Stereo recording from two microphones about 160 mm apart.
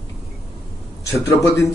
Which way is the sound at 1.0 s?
20° left (ahead or behind).